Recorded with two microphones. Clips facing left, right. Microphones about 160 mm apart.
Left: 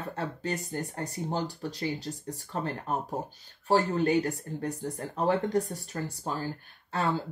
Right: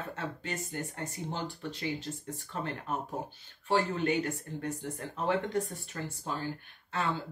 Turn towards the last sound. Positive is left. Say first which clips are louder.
# left 4 dB
turn(degrees=35)  # may be behind; listen again after turning